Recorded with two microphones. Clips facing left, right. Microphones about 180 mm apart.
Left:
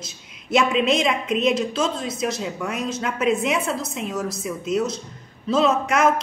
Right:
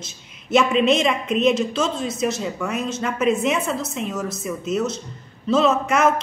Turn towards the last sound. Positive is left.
turn(degrees=0)  # may be behind; listen again after turning